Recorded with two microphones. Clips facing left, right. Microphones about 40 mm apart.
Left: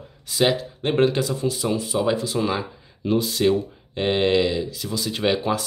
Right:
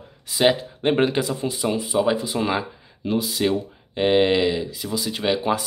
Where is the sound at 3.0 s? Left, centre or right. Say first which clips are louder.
Left 2 dB; centre.